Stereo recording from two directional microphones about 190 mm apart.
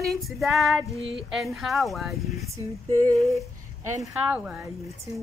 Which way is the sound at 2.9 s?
15° right (ahead or behind).